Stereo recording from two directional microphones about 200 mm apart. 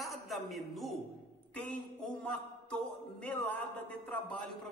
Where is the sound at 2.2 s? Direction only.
5° left (ahead or behind).